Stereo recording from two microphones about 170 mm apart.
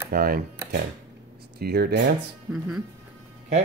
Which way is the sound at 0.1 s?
60° right (ahead or behind).